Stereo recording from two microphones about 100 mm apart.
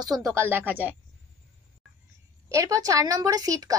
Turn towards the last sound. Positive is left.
turn(degrees=-35)  # may be behind; listen again after turning